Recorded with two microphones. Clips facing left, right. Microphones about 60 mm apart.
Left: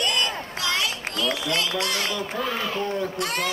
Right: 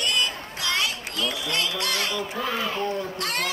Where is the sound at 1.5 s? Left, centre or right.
Centre.